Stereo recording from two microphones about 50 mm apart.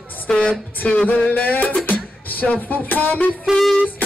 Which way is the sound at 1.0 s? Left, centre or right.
Left.